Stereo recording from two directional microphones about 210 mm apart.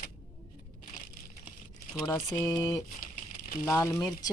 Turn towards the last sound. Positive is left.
turn(degrees=20)  # may be behind; listen again after turning